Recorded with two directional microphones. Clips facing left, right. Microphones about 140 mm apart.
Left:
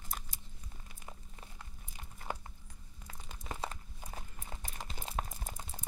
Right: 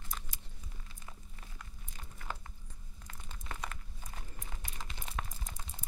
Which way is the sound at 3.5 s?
30° left (ahead or behind).